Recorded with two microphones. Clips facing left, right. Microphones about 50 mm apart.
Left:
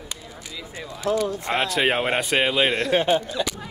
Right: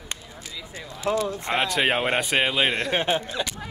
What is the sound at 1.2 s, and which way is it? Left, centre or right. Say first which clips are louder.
Speech: left 2 dB; right.